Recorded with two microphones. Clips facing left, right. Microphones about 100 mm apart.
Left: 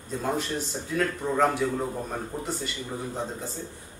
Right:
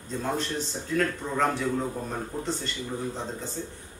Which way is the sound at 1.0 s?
5° left (ahead or behind).